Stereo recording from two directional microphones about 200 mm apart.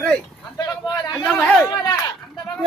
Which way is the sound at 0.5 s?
20° left (ahead or behind).